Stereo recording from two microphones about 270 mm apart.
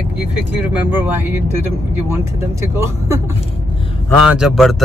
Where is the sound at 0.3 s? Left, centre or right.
Centre.